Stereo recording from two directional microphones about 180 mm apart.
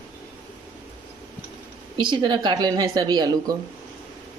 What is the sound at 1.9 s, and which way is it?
A woman's voice, 25° right (ahead or behind).